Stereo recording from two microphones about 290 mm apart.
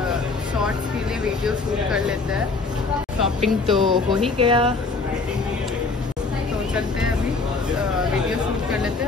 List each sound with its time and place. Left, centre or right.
1.4 s speech: centre
3.3 s speech: centre
3.8 s speech: centre